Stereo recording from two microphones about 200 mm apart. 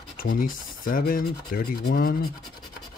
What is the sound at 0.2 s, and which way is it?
Speech, 45° left (ahead or behind).